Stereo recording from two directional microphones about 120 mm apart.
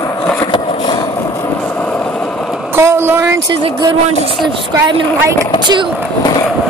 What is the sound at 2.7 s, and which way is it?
Speech, 20° right (ahead or behind).